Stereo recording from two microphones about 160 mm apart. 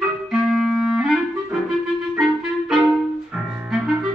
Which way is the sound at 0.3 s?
Centre (ahead or behind).